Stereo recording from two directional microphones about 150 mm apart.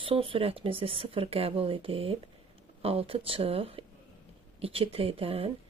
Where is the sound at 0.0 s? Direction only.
35° right (ahead or behind).